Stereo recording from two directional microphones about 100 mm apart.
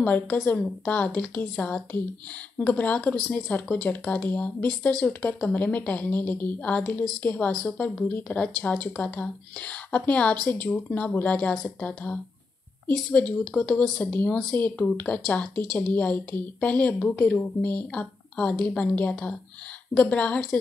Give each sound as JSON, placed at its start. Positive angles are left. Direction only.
{"t": 0.0, "sound": "a woman's voice", "side_deg": 15}